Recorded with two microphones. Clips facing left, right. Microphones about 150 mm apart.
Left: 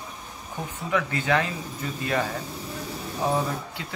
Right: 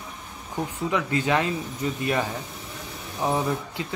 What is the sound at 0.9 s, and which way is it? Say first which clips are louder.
Speech: even; 20° right (ahead or behind).